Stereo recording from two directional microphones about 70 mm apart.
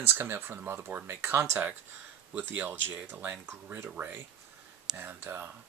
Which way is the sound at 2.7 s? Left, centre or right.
Right.